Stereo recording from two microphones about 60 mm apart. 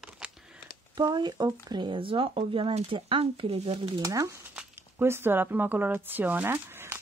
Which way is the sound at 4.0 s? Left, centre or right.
Right.